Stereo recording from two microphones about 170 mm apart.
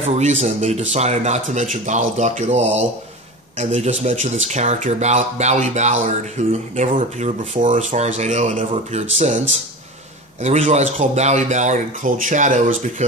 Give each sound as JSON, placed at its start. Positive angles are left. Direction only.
{"t": 0.0, "sound": "speech", "side_deg": -40}
{"t": 10.4, "sound": "speech", "side_deg": -45}